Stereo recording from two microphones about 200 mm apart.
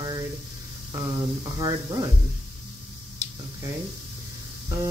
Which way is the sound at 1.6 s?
20° right (ahead or behind).